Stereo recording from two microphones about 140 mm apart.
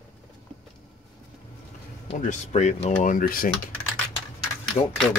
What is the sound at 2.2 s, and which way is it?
Speech, 60° left (ahead or behind).